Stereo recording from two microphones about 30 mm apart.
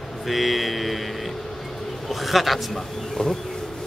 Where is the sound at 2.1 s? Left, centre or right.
Centre.